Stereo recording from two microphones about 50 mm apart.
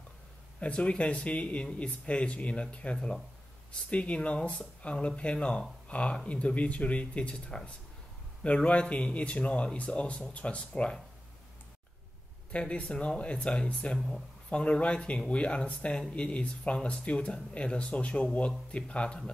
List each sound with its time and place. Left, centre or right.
0.6 s speech: left
12.5 s speech: left